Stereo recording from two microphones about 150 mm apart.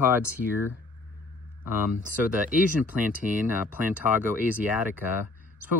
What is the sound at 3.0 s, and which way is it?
Speech, 60° right (ahead or behind).